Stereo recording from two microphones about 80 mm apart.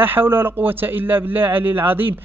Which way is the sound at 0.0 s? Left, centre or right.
Right.